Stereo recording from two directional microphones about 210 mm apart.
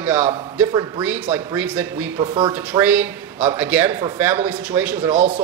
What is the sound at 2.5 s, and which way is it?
Speech, 10° right (ahead or behind).